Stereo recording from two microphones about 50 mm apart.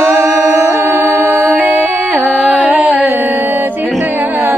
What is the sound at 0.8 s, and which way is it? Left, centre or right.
Music, right.